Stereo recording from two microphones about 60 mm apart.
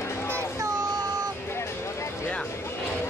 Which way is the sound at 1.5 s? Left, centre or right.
Left.